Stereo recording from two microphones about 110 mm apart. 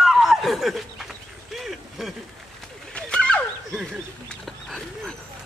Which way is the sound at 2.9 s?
10° left (ahead or behind).